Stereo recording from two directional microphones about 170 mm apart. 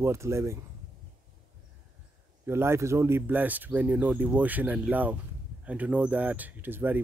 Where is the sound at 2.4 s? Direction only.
15° right (ahead or behind).